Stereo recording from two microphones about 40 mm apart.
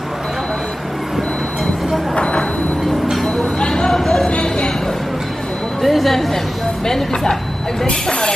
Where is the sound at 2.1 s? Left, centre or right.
Left.